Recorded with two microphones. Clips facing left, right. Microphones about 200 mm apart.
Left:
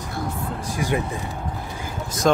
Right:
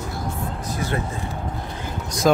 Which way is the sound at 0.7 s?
15° left (ahead or behind).